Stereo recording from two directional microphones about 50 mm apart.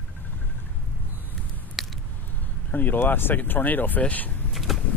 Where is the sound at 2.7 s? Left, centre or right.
Left.